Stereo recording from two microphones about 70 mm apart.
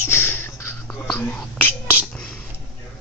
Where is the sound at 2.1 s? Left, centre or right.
Centre.